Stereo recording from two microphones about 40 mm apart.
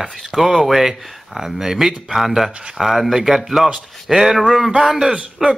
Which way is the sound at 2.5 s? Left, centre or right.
Right.